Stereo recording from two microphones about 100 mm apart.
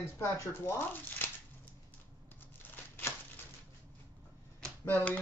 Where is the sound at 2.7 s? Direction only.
20° left (ahead or behind).